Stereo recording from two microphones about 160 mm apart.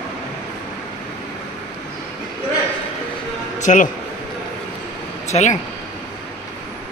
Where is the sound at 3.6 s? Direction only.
50° left (ahead or behind).